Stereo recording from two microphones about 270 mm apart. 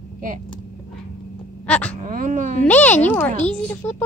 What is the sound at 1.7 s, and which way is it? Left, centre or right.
Speech, centre.